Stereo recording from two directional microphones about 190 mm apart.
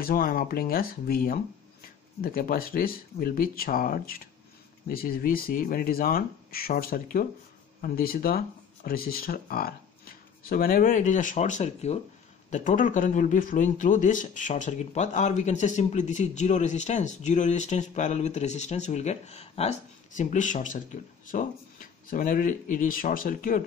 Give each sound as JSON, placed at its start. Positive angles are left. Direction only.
{"t": 0.0, "sound": "speech", "side_deg": 50}